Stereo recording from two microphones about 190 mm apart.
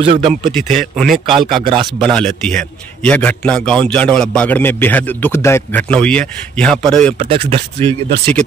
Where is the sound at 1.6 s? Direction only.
25° right (ahead or behind).